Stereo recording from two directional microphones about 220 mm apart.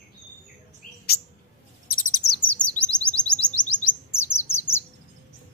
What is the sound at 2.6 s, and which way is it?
Chirp, 5° left (ahead or behind).